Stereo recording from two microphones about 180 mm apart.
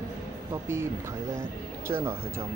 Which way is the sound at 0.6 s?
15° right (ahead or behind).